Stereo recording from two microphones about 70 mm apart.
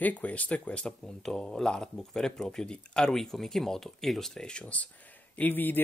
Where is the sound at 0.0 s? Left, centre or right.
Left.